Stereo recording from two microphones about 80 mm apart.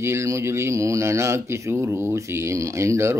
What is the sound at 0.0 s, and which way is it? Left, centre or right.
Speech, right.